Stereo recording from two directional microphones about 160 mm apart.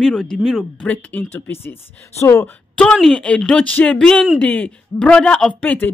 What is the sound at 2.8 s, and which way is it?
Speech, 5° left (ahead or behind).